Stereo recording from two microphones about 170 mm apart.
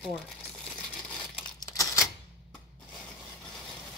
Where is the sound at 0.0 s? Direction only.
5° right (ahead or behind).